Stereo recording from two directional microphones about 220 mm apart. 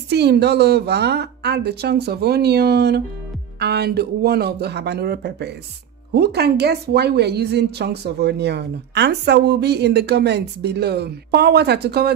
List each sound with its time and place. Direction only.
0.1 s speech: 50° right (ahead or behind)